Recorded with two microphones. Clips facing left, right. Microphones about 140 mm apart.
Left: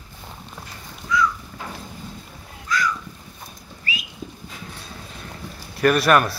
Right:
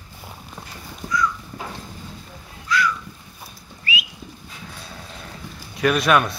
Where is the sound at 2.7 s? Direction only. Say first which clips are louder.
Right 2 dB; 45° left (ahead or behind).